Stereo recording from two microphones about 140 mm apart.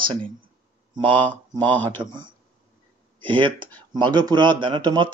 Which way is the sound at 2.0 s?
35° right (ahead or behind).